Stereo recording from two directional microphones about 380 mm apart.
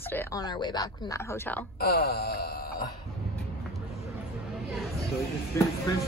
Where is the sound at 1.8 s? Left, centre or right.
Left.